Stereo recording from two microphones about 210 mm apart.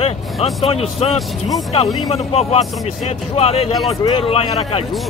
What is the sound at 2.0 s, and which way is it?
Speech, 30° left (ahead or behind).